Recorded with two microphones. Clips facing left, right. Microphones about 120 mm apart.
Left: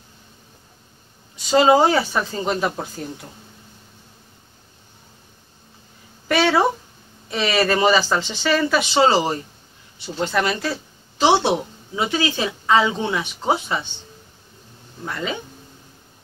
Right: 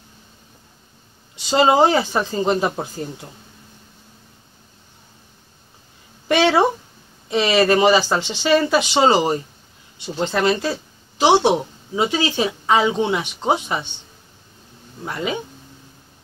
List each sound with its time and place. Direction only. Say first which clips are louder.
1.8 s speech: right 2 dB; 20° right (ahead or behind)
6.2 s a woman's voice: right 2 dB; 20° right (ahead or behind)
15.0 s speech: right 2 dB; 15° right (ahead or behind)